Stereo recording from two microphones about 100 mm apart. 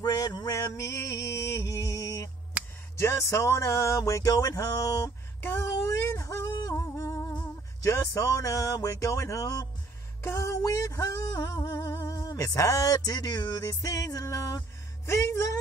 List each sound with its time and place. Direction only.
0.0 s music: 40° left (ahead or behind)